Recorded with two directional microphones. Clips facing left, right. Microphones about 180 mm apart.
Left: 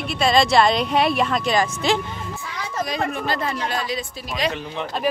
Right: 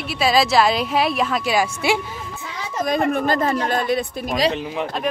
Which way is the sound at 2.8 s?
50° right (ahead or behind).